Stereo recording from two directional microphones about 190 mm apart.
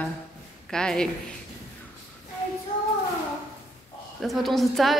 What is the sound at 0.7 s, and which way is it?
Speech, 5° left (ahead or behind).